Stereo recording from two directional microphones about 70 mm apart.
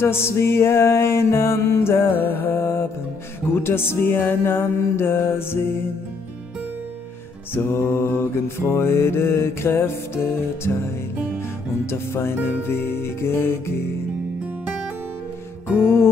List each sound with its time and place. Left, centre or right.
0.0 s mantra: left
7.5 s mantra: left
11.8 s mantra: left